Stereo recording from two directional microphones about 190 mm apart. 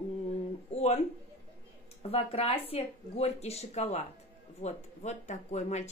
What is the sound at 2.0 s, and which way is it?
Speech, 30° left (ahead or behind).